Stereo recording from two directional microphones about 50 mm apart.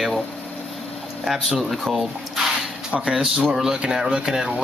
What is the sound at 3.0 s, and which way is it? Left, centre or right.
Speech, centre.